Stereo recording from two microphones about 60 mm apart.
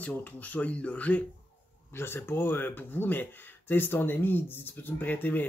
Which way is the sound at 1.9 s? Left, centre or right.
Left.